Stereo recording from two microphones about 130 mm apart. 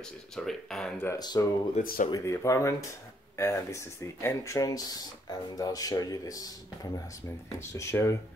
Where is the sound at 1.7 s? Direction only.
90° left.